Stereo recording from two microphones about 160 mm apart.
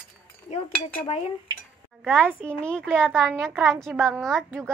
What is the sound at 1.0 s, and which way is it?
Speech, 40° left (ahead or behind).